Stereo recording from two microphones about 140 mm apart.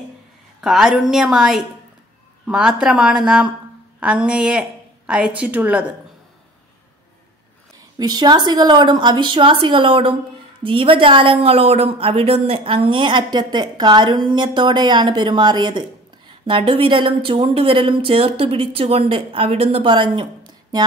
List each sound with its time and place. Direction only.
0.6 s a woman's voice: 5° right (ahead or behind)
8.0 s speech: 30° right (ahead or behind)